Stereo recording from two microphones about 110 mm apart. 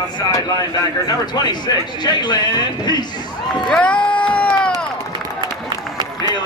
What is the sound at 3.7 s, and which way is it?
Crowd, 10° left (ahead or behind).